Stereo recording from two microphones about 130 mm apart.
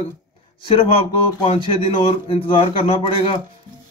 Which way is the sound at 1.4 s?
45° left (ahead or behind).